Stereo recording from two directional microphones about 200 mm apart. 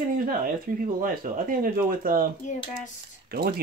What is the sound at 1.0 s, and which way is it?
Speech, 45° right (ahead or behind).